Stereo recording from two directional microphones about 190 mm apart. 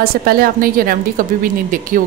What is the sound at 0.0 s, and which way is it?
A woman's voice, 50° right (ahead or behind).